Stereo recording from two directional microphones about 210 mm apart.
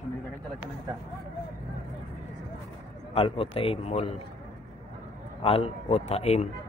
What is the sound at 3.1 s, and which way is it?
Speech, 25° left (ahead or behind).